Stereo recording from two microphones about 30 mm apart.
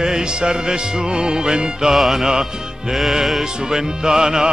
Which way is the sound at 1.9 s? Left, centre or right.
Centre.